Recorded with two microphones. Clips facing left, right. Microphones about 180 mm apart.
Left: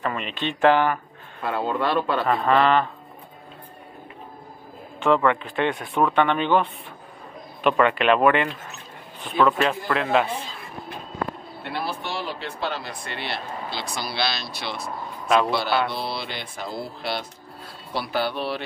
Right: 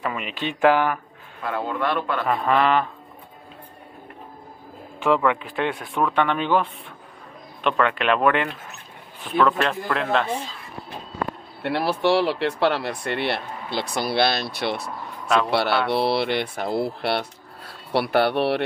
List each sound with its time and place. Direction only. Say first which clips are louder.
0.0 s speech: even; 10° right (ahead or behind)
1.4 s a man's voice: left 1 dB; 30° left (ahead or behind)
2.2 s speech: even; 5° right (ahead or behind)
5.0 s speech: even; 5° right (ahead or behind)
11.6 s speech: right 9 dB; 75° right (ahead or behind)
15.2 s a man's voice: left 1 dB; 5° left (ahead or behind)
15.5 s mantra: right 2 dB; 65° right (ahead or behind)
15.9 s speech: right 9 dB; 70° right (ahead or behind)